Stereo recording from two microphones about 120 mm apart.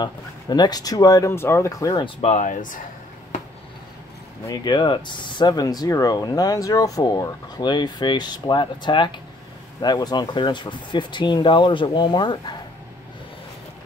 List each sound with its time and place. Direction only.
0.0 s speech: 35° left (ahead or behind)
2.0 s speech: 65° left (ahead or behind); by 2.8 s 90° left
4.5 s speech: 40° left (ahead or behind)